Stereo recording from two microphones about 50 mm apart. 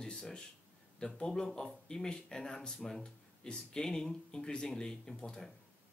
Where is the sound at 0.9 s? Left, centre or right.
Centre.